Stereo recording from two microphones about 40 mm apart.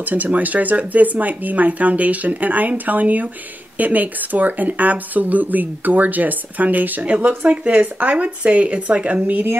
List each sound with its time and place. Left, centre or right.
0.0 s speech: right